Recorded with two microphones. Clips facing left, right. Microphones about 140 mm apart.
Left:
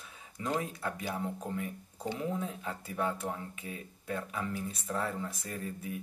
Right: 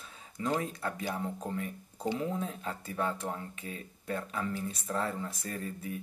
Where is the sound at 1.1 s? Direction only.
5° right (ahead or behind).